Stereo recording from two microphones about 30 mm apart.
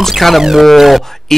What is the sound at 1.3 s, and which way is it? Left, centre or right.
Speech, centre.